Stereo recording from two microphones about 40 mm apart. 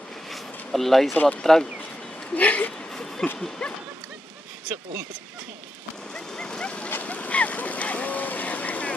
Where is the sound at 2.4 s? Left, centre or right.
Left.